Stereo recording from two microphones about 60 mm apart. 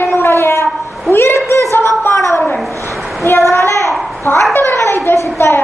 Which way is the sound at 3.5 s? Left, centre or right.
Left.